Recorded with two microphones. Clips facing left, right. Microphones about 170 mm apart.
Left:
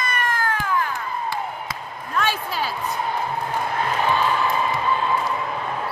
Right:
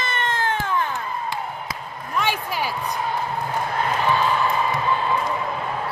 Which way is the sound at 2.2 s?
15° right (ahead or behind).